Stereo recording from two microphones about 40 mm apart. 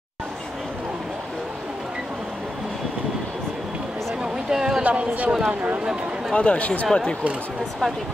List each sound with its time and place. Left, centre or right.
4.5 s speech: centre
4.8 s a woman's voice: right
6.3 s speech: left
6.9 s speech: centre